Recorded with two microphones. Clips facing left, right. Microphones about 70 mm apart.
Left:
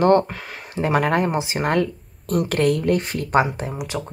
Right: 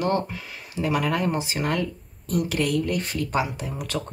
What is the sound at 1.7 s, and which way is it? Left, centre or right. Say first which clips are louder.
Speech: left 6 dB; left.